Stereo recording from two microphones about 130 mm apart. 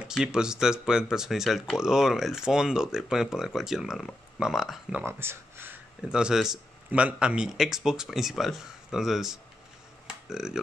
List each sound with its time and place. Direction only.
0.0 s speech: 5° right (ahead or behind)
4.9 s speech: 20° right (ahead or behind)
6.0 s speech: 5° right (ahead or behind)
10.0 s a sound: 5° right (ahead or behind)